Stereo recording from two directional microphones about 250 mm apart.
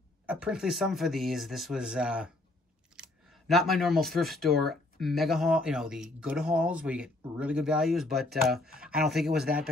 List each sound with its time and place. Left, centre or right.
0.3 s speech: centre
9.4 s speech: right